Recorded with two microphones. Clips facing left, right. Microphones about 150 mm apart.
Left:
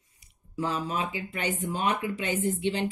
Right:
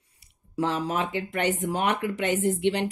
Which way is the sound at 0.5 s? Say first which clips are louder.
Right 4 dB; 75° right (ahead or behind).